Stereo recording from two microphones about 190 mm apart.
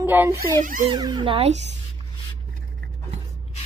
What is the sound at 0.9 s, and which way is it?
Speech, 25° right (ahead or behind).